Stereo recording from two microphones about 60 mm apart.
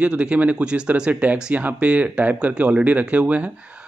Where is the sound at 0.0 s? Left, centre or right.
Centre.